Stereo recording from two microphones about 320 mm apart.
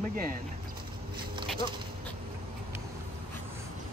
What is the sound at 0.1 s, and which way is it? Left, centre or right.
Speech, right.